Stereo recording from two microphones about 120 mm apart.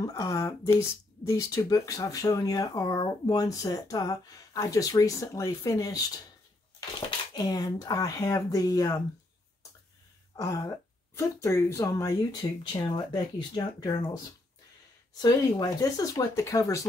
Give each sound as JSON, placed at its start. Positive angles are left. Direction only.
{"t": 0.0, "sound": "speech", "side_deg": 30}
{"t": 7.3, "sound": "speech", "side_deg": 35}
{"t": 10.3, "sound": "speech", "side_deg": 30}